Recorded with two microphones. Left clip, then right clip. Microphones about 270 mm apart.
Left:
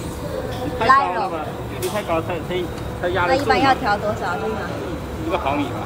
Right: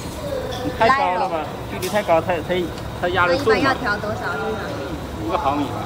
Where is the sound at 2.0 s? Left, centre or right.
Right.